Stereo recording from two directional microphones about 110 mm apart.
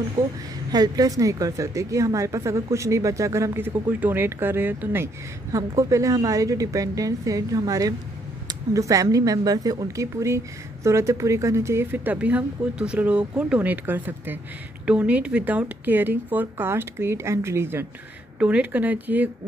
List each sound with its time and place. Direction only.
0.2 s a woman's voice: 30° right (ahead or behind)
18.4 s speech: 10° right (ahead or behind)